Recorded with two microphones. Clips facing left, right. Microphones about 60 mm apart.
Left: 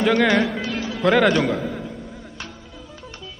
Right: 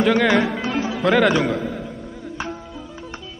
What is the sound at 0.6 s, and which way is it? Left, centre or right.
Music, right.